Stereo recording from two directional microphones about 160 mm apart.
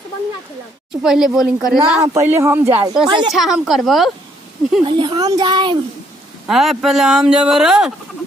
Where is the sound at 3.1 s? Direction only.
30° right (ahead or behind).